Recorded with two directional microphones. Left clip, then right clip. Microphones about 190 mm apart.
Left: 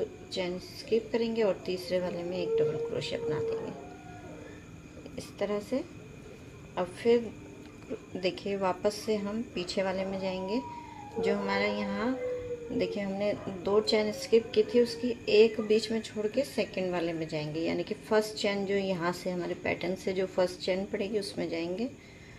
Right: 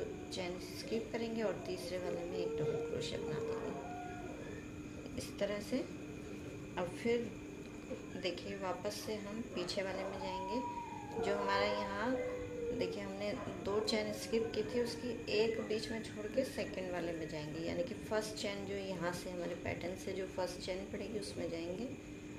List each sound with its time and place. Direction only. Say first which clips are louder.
0.3 s a woman's voice: left 8 dB; 15° right (ahead or behind)
5.1 s speech: left 6 dB; 20° right (ahead or behind)
8.2 s a woman's voice: left 11 dB; 15° right (ahead or behind)